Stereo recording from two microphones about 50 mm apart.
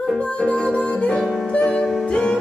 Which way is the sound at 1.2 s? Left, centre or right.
Centre.